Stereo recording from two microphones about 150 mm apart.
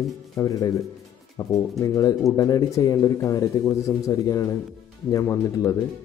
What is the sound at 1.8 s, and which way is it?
Speech, 25° left (ahead or behind).